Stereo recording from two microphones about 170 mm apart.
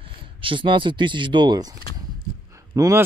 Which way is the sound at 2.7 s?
20° right (ahead or behind).